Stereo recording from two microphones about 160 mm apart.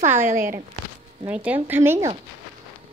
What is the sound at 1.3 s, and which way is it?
Speech, 10° right (ahead or behind).